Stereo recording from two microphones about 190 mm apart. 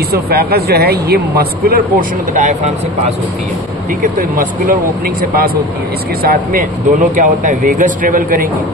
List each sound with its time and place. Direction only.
0.1 s speech: 55° right (ahead or behind)
4.0 s speech: 45° right (ahead or behind)